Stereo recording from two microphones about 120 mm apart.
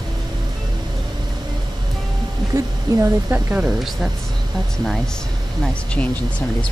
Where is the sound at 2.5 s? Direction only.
25° right (ahead or behind).